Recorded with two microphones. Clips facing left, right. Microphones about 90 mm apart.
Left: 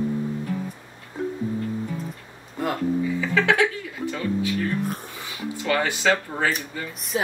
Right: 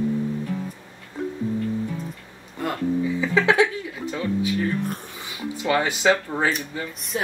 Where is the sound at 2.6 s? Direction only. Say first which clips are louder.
Left 1 dB; 5° left (ahead or behind).